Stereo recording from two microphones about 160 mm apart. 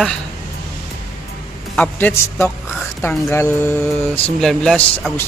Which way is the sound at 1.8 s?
10° left (ahead or behind).